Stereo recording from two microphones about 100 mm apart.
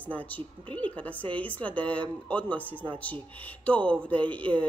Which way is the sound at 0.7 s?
15° left (ahead or behind).